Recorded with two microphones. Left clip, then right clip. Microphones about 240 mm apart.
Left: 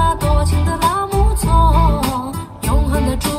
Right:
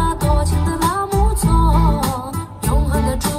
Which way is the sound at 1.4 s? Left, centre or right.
Centre.